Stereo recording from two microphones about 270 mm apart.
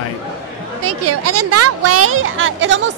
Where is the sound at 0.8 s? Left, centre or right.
Right.